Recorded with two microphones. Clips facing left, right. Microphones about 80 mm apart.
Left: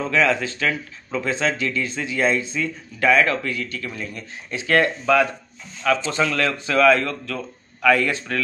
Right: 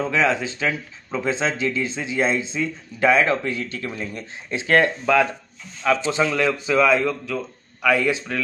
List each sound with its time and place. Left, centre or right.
0.0 s speech: right
6.0 s speech: centre